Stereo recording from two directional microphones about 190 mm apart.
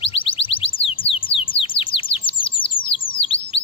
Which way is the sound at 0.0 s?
30° left (ahead or behind).